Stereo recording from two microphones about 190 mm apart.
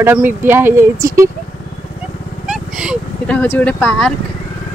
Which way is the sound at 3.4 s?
10° left (ahead or behind).